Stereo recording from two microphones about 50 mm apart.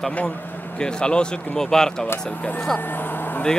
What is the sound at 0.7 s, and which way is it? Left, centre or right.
Speech, centre.